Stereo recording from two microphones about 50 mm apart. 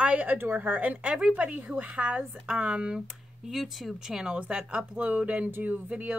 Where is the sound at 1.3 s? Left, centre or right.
Right.